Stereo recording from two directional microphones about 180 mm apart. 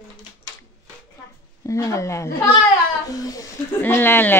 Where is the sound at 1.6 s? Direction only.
15° left (ahead or behind).